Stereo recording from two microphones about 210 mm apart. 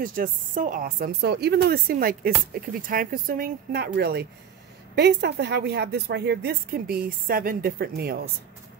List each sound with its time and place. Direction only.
0.0 s a woman's voice: 40° right (ahead or behind)